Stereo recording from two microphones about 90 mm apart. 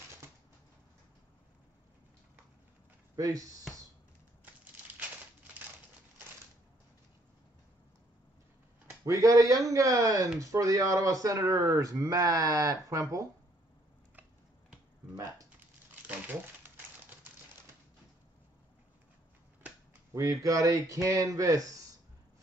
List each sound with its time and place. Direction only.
3.2 s speech: 40° right (ahead or behind)
9.0 s speech: 40° right (ahead or behind)
16.6 s typewriter: 20° right (ahead or behind)
20.2 s speech: 40° right (ahead or behind)